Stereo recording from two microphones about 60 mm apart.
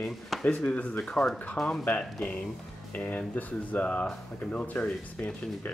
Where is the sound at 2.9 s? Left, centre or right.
Left.